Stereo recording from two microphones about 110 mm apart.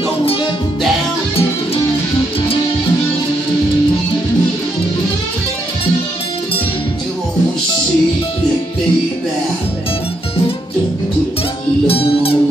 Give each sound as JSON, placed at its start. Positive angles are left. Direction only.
{"t": 11.9, "sound": "music", "side_deg": 60}